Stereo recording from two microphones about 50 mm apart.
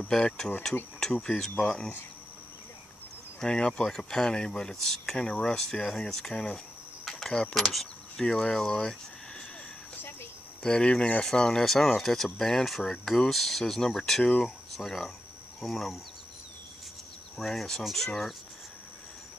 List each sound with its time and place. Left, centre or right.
0.1 s speech: centre
3.3 s speech: centre
7.1 s keys jangling: centre
7.5 s speech: centre
8.3 s speech: centre
10.6 s speech: centre
17.4 s speech: centre